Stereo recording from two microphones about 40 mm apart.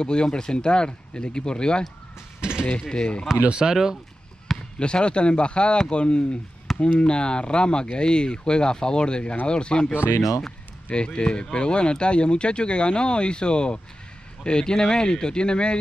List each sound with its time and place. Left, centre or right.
0.0 s speech: left
3.4 s speech: right
3.7 s speech: centre
4.7 s speech: left
10.9 s speech: left